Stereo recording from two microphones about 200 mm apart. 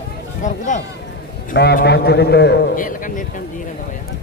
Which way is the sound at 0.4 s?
40° left (ahead or behind).